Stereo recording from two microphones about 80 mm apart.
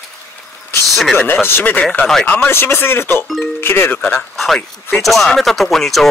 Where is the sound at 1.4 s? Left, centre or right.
Left.